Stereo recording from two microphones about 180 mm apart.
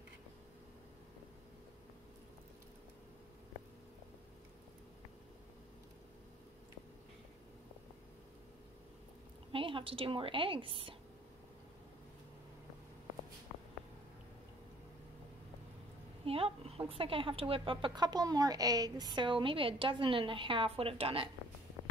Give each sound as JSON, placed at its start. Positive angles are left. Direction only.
{"t": 9.5, "sound": "a woman's voice", "side_deg": -30}
{"t": 16.3, "sound": "speech", "side_deg": -30}